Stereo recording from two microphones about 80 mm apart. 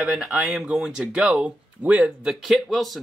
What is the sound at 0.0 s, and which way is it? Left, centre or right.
Speech, centre.